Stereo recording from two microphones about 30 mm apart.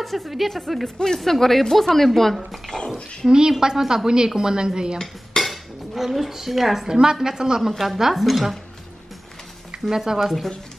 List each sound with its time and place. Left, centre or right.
0.0 s a woman's voice: centre
3.3 s a woman's voice: right
5.4 s dishes: centre
6.1 s a woman's voice: centre
6.9 s a woman's voice: right
7.8 s a woman's voice: centre
9.8 s a woman's voice: centre
10.2 s a woman's voice: centre